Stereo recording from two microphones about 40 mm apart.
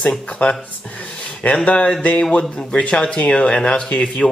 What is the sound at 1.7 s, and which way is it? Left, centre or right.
Speech, left.